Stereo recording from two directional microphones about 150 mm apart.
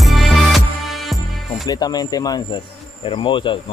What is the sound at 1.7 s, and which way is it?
Speech, 25° left (ahead or behind).